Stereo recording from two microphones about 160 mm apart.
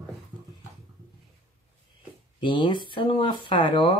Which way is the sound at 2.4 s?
30° left (ahead or behind).